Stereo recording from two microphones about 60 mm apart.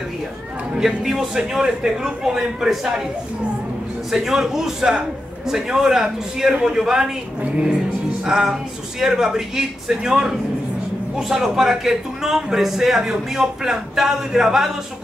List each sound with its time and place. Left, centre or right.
0.7 s a man's voice: centre
4.1 s a man's voice: centre